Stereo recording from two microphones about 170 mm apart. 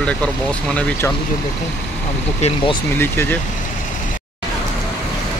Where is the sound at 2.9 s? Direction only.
15° left (ahead or behind).